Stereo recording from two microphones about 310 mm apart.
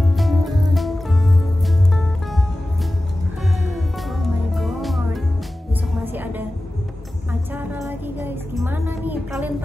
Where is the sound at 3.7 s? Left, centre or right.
Centre.